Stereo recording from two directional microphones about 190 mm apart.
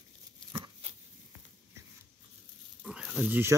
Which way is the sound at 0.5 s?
25° right (ahead or behind).